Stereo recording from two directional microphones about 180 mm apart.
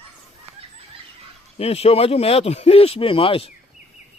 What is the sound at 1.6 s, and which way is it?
Speech, 35° left (ahead or behind).